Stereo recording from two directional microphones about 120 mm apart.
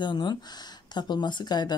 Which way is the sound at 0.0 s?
40° left (ahead or behind).